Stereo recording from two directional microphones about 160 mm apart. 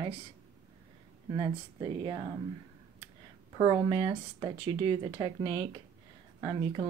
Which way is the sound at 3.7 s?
30° right (ahead or behind).